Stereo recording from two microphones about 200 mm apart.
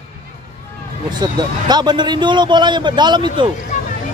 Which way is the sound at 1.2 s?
20° right (ahead or behind).